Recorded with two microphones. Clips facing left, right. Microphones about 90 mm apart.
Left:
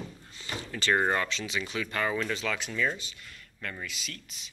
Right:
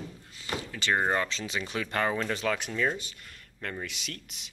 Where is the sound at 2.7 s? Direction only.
30° right (ahead or behind).